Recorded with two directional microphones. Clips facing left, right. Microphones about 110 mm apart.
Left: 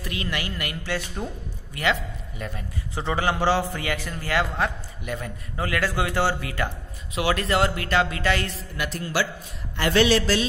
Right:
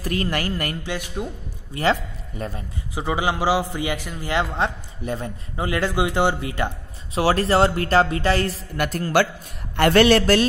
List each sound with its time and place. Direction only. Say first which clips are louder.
0.0 s speech: right 6 dB; 45° right (ahead or behind)
0.8 s a man's voice: right 1 dB; 10° right (ahead or behind)
1.7 s a man's voice: right 4 dB; 35° right (ahead or behind)
2.9 s a man's voice: right 2 dB; 10° right (ahead or behind)
7.2 s speech: right 5 dB; 35° right (ahead or behind)
8.7 s speech: right 6 dB; 50° right (ahead or behind)